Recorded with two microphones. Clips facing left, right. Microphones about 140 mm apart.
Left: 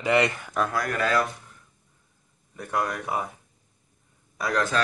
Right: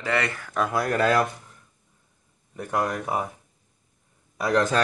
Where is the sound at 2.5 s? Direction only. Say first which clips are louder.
Right 2 dB; 20° right (ahead or behind).